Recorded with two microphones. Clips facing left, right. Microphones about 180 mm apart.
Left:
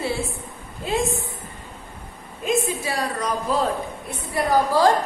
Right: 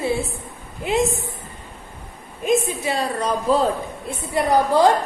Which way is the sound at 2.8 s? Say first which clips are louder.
Right 3 dB; 25° right (ahead or behind).